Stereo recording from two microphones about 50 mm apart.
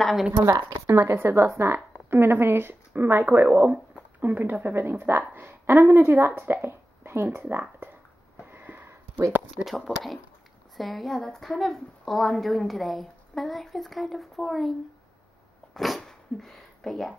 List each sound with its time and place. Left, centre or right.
0.0 s speech: centre
0.4 s speech: right
0.9 s a woman's voice: right
7.2 s a woman's voice: right
8.5 s a sound: right
9.7 s a woman's voice: centre
15.7 s sneeze: centre
16.0 s a sound: centre